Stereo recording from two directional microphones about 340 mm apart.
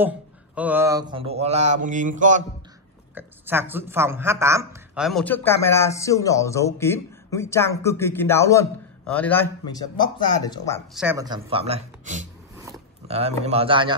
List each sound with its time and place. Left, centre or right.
0.6 s mantra: centre; by 2.4 s right
3.2 s a woman's voice: centre
11.0 s speech: centre
13.5 s speech: centre